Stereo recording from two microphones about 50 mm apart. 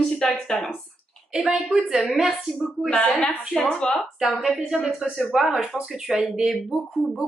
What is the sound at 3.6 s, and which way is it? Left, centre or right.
Speech, centre.